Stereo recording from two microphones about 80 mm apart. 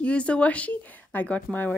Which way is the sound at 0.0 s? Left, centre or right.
Centre.